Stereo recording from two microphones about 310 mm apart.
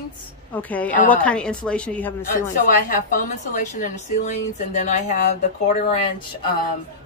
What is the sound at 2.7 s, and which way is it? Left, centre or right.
A woman's voice, left.